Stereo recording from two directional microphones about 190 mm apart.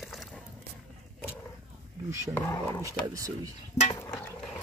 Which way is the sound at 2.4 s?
15° left (ahead or behind).